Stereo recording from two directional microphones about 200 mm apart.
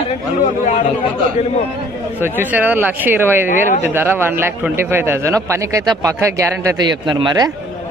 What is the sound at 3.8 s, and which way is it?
A man's voice, 10° right (ahead or behind).